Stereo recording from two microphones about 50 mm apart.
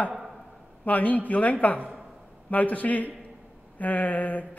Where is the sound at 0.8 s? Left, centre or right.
Left.